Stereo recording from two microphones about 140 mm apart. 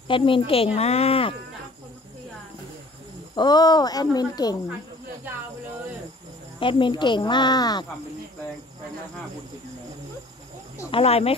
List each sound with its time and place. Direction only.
0.1 s speech: 40° left (ahead or behind)
3.3 s speech: 30° left (ahead or behind)
6.6 s speech: 35° left (ahead or behind)
10.9 s speech: 45° left (ahead or behind)